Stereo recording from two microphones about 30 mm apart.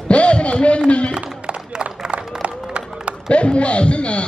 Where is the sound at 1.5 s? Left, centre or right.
Right.